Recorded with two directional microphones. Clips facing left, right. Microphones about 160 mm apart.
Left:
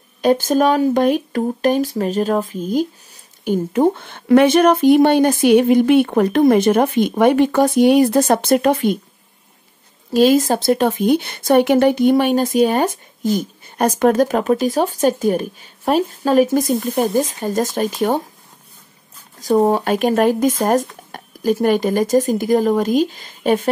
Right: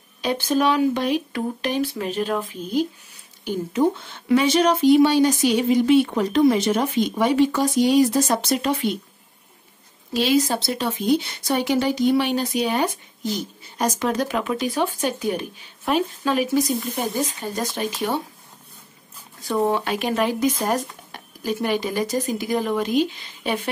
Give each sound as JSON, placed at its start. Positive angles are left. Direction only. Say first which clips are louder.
{"t": 0.2, "sound": "speech", "louder": "left 6 dB", "side_deg": 45}
{"t": 10.1, "sound": "speech", "louder": "left 7 dB", "side_deg": 45}
{"t": 19.4, "sound": "a woman's voice", "louder": "left 7 dB", "side_deg": 40}